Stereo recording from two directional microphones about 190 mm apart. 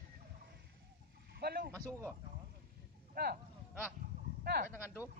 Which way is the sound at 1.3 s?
55° right (ahead or behind).